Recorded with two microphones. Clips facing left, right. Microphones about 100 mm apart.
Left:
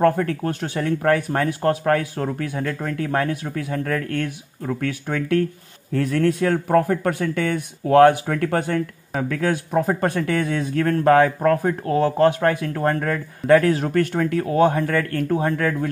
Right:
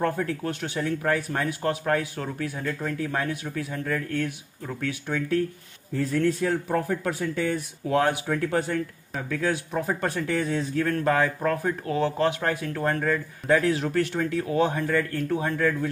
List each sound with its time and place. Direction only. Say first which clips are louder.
0.0 s speech: left 7 dB; 55° left (ahead or behind)
1.5 s speech: left 6 dB; 40° left (ahead or behind)
5.9 s speech: left 4 dB; 75° left (ahead or behind); by 10.2 s 45° left (ahead or behind)
10.2 s speech: left 4 dB; 60° left (ahead or behind); by 13.0 s 40° left (ahead or behind)
13.0 s speech: left 2 dB; 55° left (ahead or behind)
13.7 s speech: left 5 dB; 45° left (ahead or behind)
14.9 s speech: left 3 dB; 65° left (ahead or behind)
15.2 s speech: left 5 dB; 40° left (ahead or behind)